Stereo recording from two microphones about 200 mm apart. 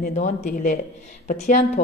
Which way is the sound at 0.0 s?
35° left (ahead or behind).